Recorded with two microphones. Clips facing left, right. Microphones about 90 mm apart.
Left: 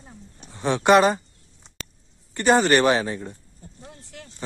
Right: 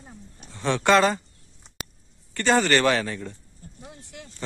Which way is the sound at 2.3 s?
20° left (ahead or behind).